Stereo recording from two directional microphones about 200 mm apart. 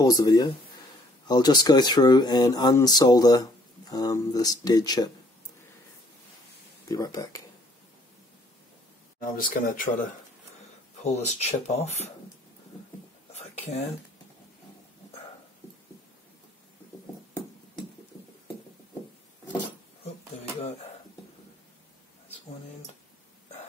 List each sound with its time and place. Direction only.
0.0 s speech: 20° left (ahead or behind)
6.9 s speech: 15° left (ahead or behind)
9.2 s speech: 45° left (ahead or behind)
11.0 s speech: 35° left (ahead or behind)
13.3 s a sound: 35° left (ahead or behind)